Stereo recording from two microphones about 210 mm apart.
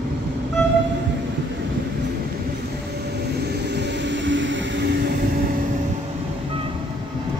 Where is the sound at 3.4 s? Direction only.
55° right (ahead or behind).